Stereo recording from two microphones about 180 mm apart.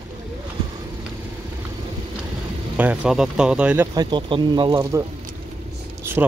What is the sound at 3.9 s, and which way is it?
Speech, 25° right (ahead or behind).